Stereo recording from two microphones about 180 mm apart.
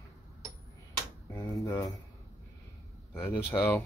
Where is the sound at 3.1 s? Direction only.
15° left (ahead or behind).